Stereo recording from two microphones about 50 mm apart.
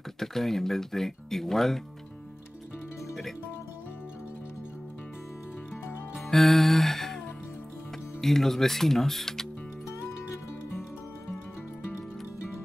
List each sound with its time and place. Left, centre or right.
0.2 s speech: centre
6.2 s music: centre
8.2 s speech: centre